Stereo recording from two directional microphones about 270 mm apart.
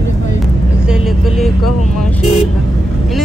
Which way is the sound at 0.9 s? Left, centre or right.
Centre.